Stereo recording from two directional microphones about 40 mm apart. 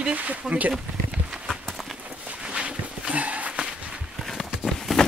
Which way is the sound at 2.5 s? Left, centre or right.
Right.